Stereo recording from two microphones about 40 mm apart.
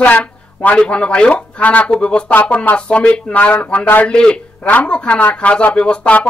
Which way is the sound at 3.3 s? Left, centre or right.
Left.